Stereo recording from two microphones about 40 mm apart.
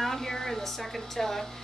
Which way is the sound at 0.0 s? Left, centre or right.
Centre.